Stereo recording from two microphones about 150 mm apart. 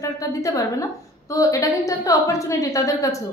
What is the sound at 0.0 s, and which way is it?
A woman's voice, 20° left (ahead or behind).